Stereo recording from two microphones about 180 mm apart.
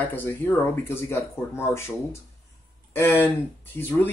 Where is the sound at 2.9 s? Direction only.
15° left (ahead or behind).